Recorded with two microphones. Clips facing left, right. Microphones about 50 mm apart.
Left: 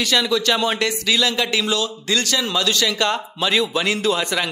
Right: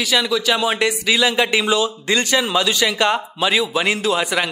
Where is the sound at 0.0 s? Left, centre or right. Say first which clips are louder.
Even; centre.